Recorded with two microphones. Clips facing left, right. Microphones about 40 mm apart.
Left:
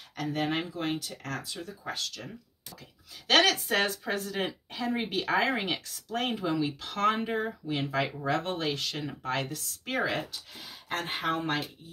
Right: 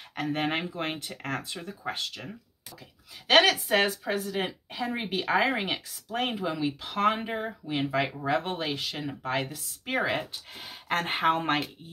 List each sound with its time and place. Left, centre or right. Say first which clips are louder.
0.1 s speech: right 2 dB; right
3.3 s speech: right 3 dB; centre
10.6 s speech: right 5 dB; right